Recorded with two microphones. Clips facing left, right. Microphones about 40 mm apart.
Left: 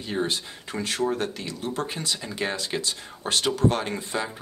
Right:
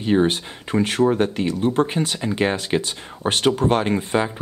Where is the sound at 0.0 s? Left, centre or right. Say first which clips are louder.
Right 9 dB; right.